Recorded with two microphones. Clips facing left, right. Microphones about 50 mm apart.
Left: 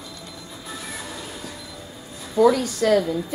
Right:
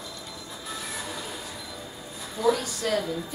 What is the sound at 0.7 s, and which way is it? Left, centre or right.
Train, centre.